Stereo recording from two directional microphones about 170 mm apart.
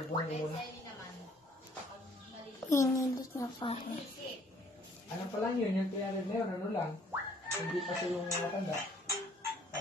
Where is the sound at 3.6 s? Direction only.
30° left (ahead or behind).